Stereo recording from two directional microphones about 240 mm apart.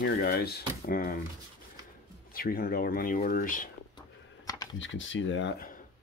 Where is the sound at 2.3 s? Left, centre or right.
Left.